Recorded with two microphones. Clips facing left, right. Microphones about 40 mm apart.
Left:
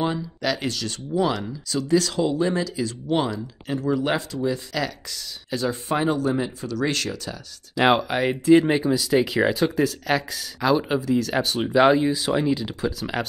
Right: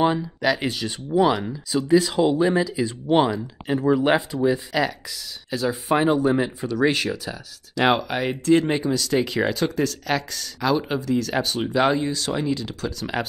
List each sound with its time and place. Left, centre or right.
0.0 s speech: centre
5.1 s speech: centre
5.9 s speech: centre
7.7 s speech: centre
13.0 s speech: centre